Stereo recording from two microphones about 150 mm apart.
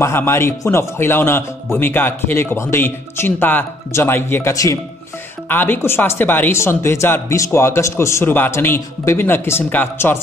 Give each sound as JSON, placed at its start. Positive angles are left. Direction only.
{"t": 0.0, "sound": "speech", "side_deg": 15}